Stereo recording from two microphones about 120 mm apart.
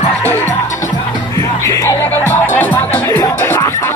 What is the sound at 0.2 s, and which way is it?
Music, 20° left (ahead or behind).